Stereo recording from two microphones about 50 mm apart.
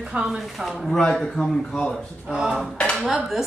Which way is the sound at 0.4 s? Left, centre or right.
Centre.